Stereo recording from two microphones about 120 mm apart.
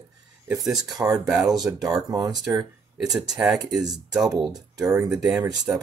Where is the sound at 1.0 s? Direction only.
30° right (ahead or behind).